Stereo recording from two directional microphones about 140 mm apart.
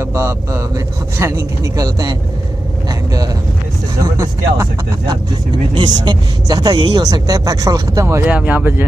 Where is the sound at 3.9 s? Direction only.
25° right (ahead or behind).